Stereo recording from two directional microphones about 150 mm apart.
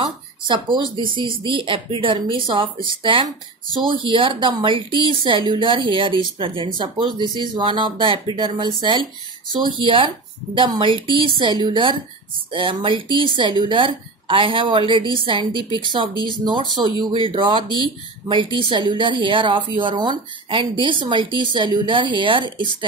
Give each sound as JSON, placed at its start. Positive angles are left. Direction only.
{"t": 0.0, "sound": "speech", "side_deg": -30}
{"t": 16.8, "sound": "speech", "side_deg": -35}